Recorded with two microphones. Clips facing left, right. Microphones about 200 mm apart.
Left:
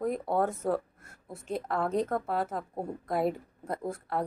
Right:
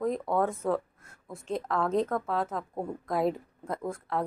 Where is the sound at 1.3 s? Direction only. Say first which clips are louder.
Right 1 dB; 5° left (ahead or behind).